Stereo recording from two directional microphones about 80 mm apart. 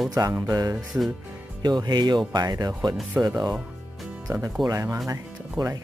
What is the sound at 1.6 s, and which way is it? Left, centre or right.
Speech, right.